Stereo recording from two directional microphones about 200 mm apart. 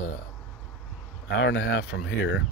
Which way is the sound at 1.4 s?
60° left (ahead or behind).